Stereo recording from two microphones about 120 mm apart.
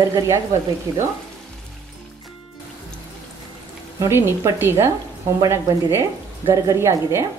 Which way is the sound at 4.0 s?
20° right (ahead or behind).